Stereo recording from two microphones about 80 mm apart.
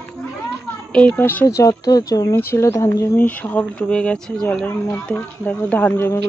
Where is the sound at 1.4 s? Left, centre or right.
Left.